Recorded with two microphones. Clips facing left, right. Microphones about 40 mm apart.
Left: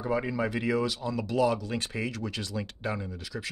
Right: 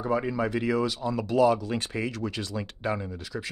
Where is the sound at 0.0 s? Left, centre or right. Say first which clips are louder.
Right 2 dB; centre.